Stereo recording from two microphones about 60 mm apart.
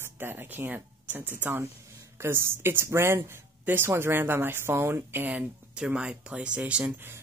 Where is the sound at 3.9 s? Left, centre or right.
Right.